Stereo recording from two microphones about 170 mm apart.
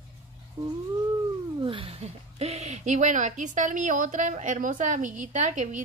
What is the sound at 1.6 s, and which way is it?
Speech, 30° right (ahead or behind).